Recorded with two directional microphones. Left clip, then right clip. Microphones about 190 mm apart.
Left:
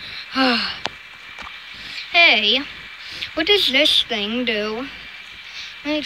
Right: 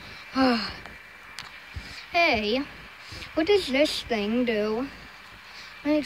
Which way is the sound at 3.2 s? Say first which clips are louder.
Left 6 dB; 10° right (ahead or behind).